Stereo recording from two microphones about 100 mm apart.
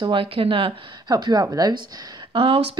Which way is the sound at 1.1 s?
40° right (ahead or behind).